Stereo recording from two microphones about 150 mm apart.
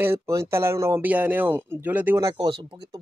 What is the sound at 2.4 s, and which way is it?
Speech, 30° right (ahead or behind).